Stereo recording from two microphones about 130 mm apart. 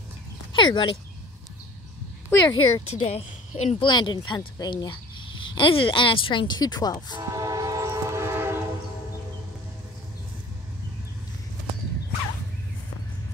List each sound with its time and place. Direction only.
0.5 s speech: 35° left (ahead or behind)
2.4 s speech: 35° left (ahead or behind)
3.1 s a woman's voice: 55° left (ahead or behind)
3.8 s speech: 35° left (ahead or behind)
7.2 s train: 25° right (ahead or behind)